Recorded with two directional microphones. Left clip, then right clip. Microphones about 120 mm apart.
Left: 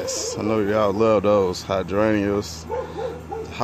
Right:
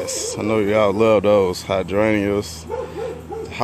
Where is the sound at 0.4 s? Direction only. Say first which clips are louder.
Right 4 dB; 5° right (ahead or behind).